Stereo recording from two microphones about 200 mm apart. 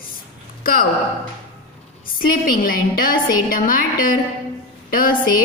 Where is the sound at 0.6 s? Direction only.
45° left (ahead or behind).